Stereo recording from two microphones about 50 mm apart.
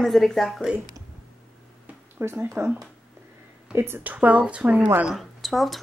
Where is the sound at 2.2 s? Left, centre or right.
Right.